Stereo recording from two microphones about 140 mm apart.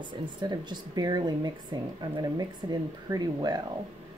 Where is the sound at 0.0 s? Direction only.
35° right (ahead or behind).